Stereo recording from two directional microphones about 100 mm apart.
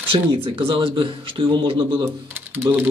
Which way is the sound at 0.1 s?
70° right (ahead or behind).